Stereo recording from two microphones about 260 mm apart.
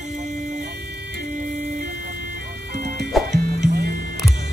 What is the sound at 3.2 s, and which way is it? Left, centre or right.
Music, centre.